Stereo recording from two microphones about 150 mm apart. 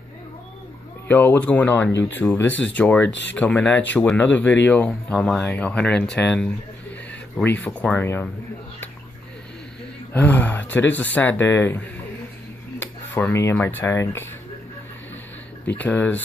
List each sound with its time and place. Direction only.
1.0 s speech: 10° left (ahead or behind)
10.1 s speech: 10° left (ahead or behind)
15.8 s speech: 10° left (ahead or behind)